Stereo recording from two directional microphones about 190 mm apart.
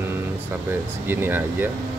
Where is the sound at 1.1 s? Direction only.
10° right (ahead or behind).